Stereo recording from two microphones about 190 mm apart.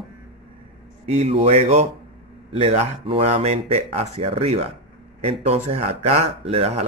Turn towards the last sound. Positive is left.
turn(degrees=-35)  # may be behind; listen again after turning